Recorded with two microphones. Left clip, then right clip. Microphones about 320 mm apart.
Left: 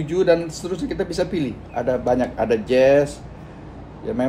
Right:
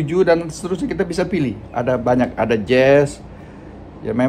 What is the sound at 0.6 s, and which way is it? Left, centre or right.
A man's voice, right.